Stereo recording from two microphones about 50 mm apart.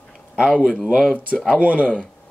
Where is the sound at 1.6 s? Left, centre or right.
Right.